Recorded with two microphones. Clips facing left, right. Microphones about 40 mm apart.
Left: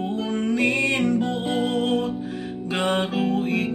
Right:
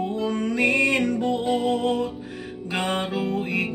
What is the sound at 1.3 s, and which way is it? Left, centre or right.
Music, left.